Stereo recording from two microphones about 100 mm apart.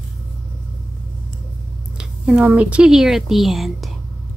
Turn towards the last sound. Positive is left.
turn(degrees=0)  # may be behind; listen again after turning